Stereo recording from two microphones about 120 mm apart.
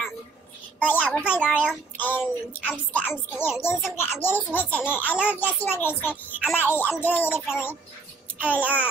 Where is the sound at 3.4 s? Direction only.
20° left (ahead or behind).